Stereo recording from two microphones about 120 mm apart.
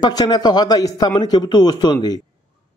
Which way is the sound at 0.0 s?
35° left (ahead or behind).